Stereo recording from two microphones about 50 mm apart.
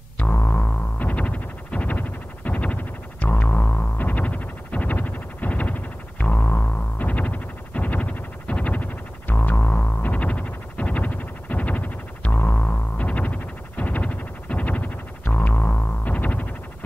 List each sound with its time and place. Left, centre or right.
0.2 s music: left